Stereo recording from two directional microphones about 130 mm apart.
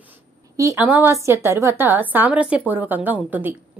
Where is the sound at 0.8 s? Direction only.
10° right (ahead or behind).